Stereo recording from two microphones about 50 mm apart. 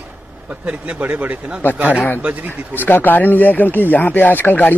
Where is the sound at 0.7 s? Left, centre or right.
Right.